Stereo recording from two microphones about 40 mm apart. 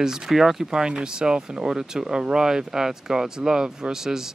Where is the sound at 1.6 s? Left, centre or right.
Centre.